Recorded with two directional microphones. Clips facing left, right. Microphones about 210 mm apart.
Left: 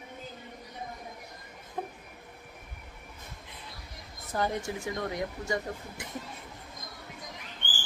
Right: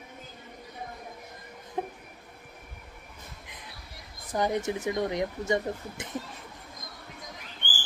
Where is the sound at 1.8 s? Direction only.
15° right (ahead or behind).